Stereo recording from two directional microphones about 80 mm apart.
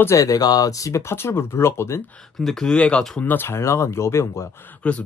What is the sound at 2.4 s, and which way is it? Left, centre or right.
Speech, centre.